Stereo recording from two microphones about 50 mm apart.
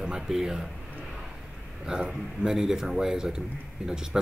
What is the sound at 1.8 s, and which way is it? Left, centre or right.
Speech, centre.